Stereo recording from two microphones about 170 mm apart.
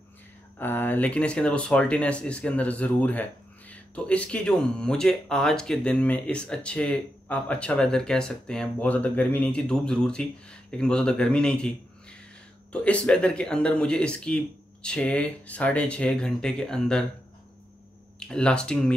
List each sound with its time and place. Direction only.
0.6 s speech: 10° left (ahead or behind)
18.3 s speech: 5° left (ahead or behind)